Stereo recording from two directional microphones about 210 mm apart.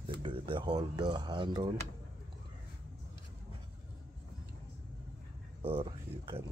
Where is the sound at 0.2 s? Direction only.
25° right (ahead or behind).